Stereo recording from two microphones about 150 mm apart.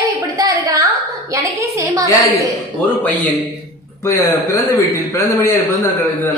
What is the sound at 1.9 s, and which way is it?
Speech, 20° right (ahead or behind).